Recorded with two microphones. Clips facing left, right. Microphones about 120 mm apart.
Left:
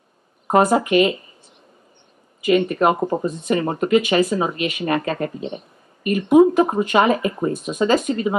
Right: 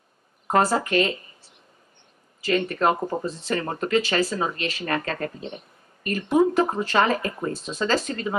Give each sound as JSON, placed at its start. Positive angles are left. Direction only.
{"t": 0.5, "sound": "speech", "side_deg": 20}
{"t": 2.4, "sound": "speech", "side_deg": 15}